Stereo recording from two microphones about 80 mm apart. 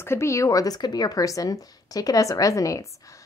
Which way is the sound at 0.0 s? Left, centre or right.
Left.